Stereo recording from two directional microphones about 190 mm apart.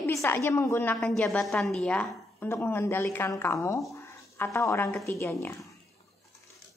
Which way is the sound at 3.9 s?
15° left (ahead or behind).